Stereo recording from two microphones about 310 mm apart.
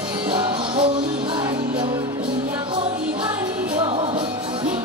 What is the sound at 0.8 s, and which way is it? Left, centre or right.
Music, centre.